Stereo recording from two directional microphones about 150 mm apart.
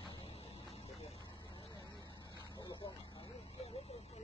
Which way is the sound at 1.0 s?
45° left (ahead or behind).